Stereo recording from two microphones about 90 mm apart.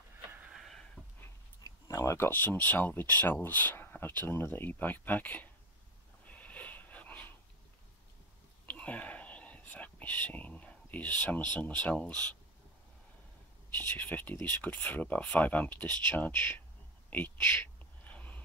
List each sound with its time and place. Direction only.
0.4 s a sound: 5° right (ahead or behind)
1.6 s speech: 35° left (ahead or behind); by 5.5 s 20° left (ahead or behind)
6.2 s wheeze: 15° left (ahead or behind)
8.6 s whispering: 15° left (ahead or behind)
11.5 s speech: 15° left (ahead or behind)
13.7 s speech: 20° left (ahead or behind)
18.0 s a sound: 15° left (ahead or behind)